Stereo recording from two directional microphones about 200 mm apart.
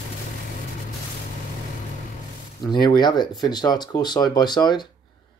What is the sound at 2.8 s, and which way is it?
Speech, 20° left (ahead or behind).